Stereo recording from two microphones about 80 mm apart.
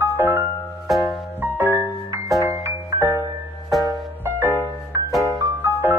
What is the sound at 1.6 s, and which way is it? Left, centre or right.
Music, right.